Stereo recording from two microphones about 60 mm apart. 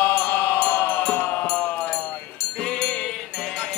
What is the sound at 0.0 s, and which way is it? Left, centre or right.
Music, left.